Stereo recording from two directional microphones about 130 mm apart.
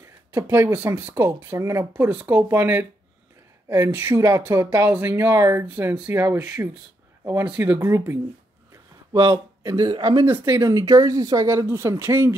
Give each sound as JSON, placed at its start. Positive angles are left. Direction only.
{"t": 0.3, "sound": "speech", "side_deg": -20}
{"t": 2.0, "sound": "speech", "side_deg": -10}
{"t": 6.4, "sound": "speech", "side_deg": -10}
{"t": 7.2, "sound": "speech", "side_deg": -25}
{"t": 9.1, "sound": "speech", "side_deg": -35}
{"t": 10.2, "sound": "speech", "side_deg": -20}